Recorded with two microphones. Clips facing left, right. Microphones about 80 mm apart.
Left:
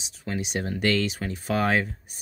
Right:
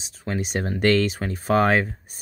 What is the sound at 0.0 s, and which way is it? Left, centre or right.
Speech, right.